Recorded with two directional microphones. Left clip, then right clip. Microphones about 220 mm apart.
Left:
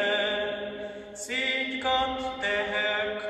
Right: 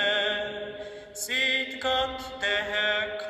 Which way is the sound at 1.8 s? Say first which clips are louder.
Left 4 dB; 45° right (ahead or behind).